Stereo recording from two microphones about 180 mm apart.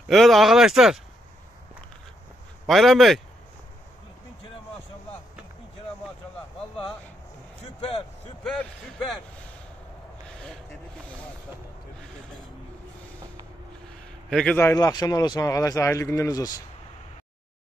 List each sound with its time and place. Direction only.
0.1 s speech: centre (ahead or behind)
2.6 s speech: centre (ahead or behind)
8.5 s speech: 5° left (ahead or behind)
10.2 s a sound: 5° left (ahead or behind)
14.3 s a man's voice: 5° left (ahead or behind)
14.7 s speech: 20° left (ahead or behind)